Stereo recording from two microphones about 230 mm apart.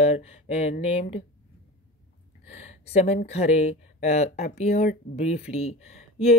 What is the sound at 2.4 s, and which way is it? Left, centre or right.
Speech, left.